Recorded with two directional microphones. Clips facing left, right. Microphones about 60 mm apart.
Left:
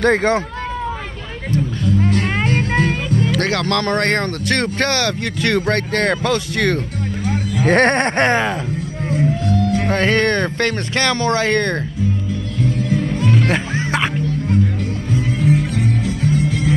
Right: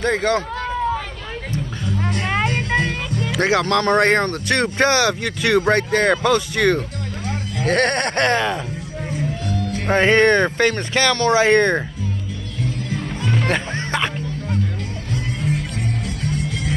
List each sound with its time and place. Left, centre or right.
0.0 s speech: left
2.0 s music: centre
3.3 s speech: centre
4.8 s speech: centre
5.2 s speech: centre
7.6 s speech: left
9.8 s speech: centre
10.6 s speech: centre
11.3 s speech: centre
13.4 s music: centre